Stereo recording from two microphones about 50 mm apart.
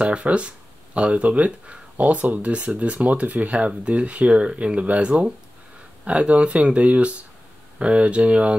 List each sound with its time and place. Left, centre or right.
0.0 s speech: right